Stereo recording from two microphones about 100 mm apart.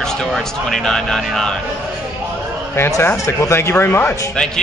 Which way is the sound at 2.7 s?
25° left (ahead or behind).